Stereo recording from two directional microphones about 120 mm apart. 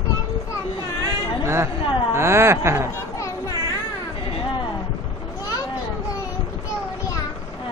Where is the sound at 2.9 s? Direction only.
25° left (ahead or behind).